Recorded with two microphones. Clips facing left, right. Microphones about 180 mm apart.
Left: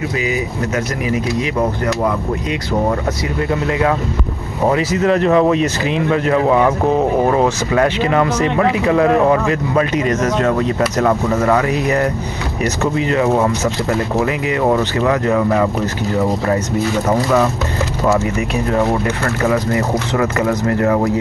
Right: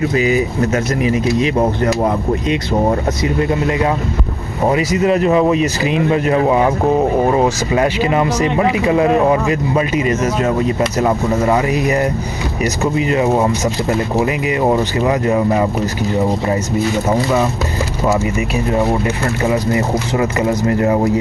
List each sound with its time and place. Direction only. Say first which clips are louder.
0.1 s speech: right 5 dB; 35° right (ahead or behind)
4.7 s speech: right 2 dB; 10° right (ahead or behind)
6.0 s speech: even; 15° right (ahead or behind)
18.0 s speech: even; 15° right (ahead or behind)